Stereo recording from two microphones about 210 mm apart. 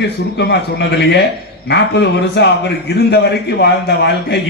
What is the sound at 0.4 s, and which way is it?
A man's voice, 55° left (ahead or behind).